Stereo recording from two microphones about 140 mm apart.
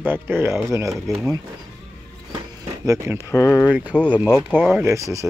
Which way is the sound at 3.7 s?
10° right (ahead or behind).